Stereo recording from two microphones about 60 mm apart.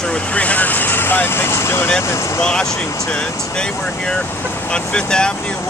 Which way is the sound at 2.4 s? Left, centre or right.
Centre.